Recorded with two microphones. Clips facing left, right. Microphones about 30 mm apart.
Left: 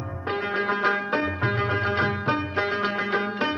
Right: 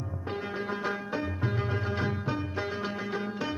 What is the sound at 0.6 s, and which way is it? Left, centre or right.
Music, left.